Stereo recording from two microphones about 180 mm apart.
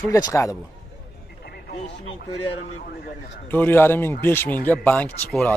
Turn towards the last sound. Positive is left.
turn(degrees=5)  # may be behind; listen again after turning